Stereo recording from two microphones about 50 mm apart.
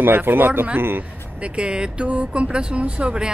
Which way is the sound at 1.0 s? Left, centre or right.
Right.